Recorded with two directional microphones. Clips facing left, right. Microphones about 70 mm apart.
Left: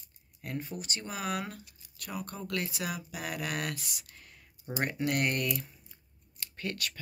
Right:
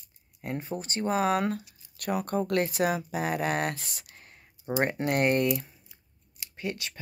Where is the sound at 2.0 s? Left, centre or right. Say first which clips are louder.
Right 11 dB; right.